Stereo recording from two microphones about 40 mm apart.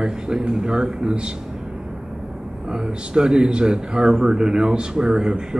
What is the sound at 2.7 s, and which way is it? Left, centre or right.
A man's voice, centre.